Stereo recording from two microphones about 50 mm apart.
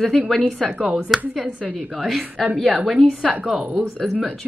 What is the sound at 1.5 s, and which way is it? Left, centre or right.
Speech, centre.